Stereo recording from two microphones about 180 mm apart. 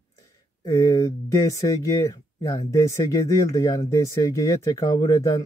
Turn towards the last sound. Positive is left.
turn(degrees=20)  # may be behind; listen again after turning